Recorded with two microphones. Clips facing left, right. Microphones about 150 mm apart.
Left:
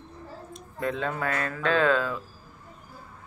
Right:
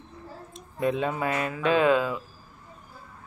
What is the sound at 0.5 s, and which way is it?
Speech, 20° right (ahead or behind).